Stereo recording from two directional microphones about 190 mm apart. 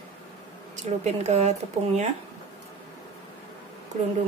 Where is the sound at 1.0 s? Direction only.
35° right (ahead or behind).